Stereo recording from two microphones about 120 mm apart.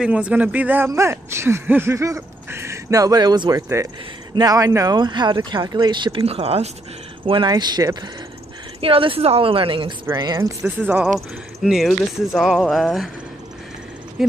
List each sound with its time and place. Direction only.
0.0 s a man's voice: 10° right (ahead or behind); by 6.2 s 40° right (ahead or behind)
6.2 s speech: 55° right (ahead or behind)
7.2 s speech: 40° right (ahead or behind)
8.8 s a woman's voice: 50° right (ahead or behind)
10.1 s speech: 35° right (ahead or behind)
10.8 s a man's voice: 15° right (ahead or behind)
11.1 s speech: 5° right (ahead or behind)